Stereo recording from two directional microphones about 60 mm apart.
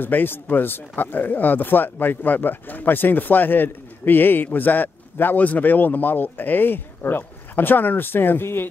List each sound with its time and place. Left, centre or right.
0.0 s speech: left